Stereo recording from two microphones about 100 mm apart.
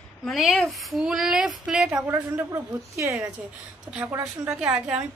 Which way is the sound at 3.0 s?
30° right (ahead or behind).